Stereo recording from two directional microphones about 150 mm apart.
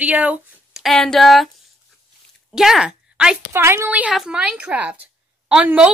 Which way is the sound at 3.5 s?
15° right (ahead or behind).